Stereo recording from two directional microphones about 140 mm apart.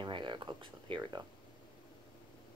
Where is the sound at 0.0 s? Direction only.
35° right (ahead or behind).